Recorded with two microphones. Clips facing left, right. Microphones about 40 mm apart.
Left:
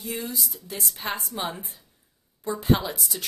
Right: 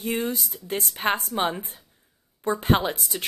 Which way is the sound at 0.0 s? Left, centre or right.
Right.